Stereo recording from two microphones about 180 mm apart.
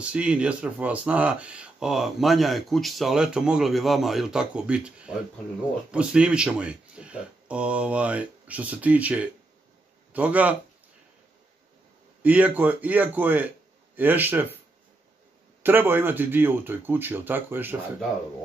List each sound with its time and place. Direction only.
0.0 s speech: 5° right (ahead or behind)
12.2 s speech: 10° right (ahead or behind)
15.6 s speech: 10° right (ahead or behind)